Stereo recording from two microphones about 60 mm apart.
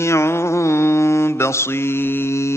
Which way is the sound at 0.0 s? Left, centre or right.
Left.